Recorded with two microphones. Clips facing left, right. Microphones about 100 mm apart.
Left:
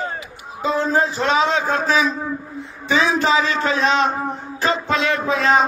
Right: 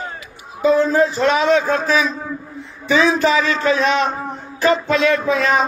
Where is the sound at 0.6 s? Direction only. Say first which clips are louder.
Right 5 dB; 25° left (ahead or behind).